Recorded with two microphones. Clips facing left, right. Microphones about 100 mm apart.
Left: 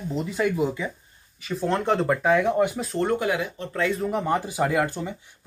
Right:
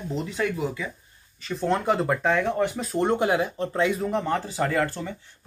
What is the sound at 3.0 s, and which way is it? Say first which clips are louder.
Speech: right 2 dB; 25° right (ahead or behind).